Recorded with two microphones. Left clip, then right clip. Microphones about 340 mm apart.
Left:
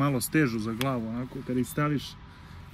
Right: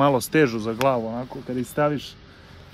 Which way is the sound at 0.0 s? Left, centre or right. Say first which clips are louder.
Right 8 dB; right.